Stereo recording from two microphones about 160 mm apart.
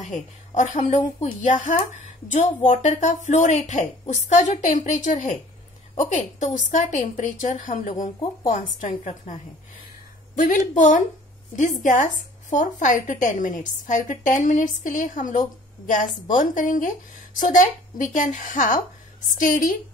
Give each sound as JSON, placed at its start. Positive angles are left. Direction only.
{"t": 0.0, "sound": "a woman's voice", "side_deg": 50}